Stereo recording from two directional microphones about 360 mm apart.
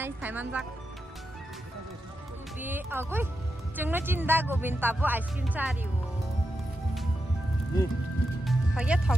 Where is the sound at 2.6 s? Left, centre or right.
Centre.